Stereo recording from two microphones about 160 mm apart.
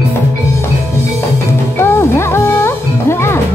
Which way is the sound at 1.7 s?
15° left (ahead or behind).